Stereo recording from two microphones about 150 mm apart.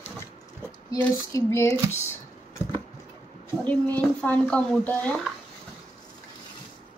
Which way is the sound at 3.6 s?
10° left (ahead or behind).